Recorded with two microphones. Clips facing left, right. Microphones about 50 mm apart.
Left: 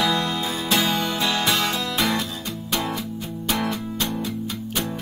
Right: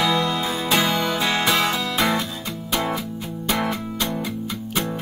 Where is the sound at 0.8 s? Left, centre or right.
Right.